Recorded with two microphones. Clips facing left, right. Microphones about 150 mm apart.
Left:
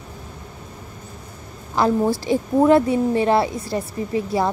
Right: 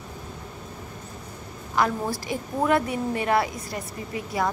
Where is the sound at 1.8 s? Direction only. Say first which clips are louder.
Left 6 dB; 30° left (ahead or behind).